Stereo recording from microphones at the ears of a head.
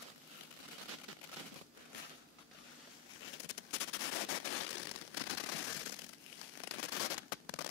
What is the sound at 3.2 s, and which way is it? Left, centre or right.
Machine gun, left.